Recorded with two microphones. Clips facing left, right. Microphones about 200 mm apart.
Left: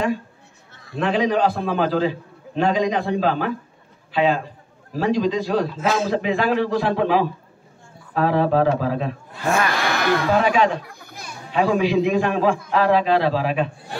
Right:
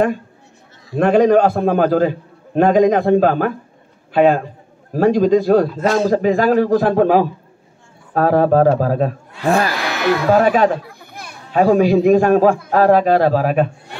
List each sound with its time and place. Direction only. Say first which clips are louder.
0.9 s speech: right 8 dB; 50° right (ahead or behind)
5.8 s speech: right 5 dB; 5° left (ahead or behind)
6.0 s speech: right 6 dB; 45° right (ahead or behind)